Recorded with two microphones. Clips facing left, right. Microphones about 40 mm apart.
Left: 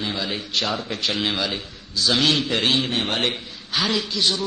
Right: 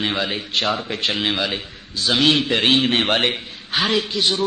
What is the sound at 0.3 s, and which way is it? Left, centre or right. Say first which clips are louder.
A man's voice: right 3 dB; right.